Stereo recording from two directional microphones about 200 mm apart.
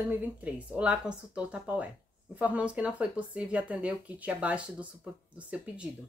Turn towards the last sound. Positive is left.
turn(degrees=-5)  # may be behind; listen again after turning